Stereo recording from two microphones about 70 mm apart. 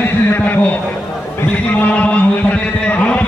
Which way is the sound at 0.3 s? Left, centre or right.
Left.